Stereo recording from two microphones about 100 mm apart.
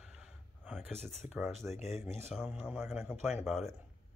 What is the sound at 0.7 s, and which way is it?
Speech, 5° left (ahead or behind).